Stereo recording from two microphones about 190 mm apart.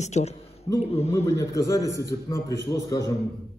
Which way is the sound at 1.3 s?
15° left (ahead or behind).